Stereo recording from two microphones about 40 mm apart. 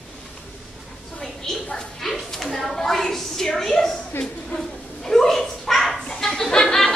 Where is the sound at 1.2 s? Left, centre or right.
Centre.